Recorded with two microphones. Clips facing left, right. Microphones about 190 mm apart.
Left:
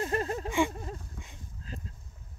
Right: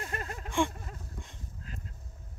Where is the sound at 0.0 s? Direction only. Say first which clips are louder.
Left 9 dB; 30° left (ahead or behind).